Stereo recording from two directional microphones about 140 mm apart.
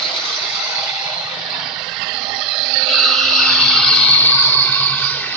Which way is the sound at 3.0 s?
Centre (ahead or behind).